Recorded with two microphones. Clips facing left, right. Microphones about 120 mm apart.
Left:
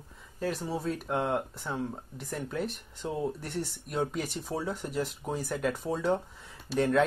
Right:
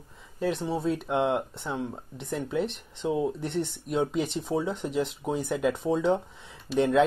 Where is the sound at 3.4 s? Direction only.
5° left (ahead or behind).